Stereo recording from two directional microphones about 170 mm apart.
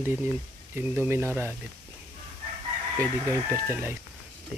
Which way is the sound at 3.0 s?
15° right (ahead or behind).